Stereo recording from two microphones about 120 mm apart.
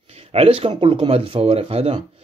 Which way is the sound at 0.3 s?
55° right (ahead or behind).